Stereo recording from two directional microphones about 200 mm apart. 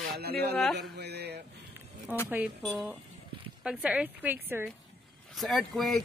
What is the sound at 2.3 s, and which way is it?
Speech, 5° right (ahead or behind).